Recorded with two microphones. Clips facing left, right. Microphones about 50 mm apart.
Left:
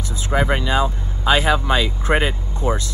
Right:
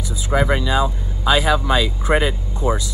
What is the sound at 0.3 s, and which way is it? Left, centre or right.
Speech, centre.